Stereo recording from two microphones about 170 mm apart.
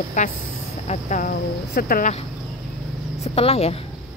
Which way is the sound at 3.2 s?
35° left (ahead or behind).